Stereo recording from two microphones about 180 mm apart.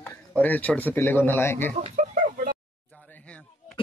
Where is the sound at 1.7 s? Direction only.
40° right (ahead or behind).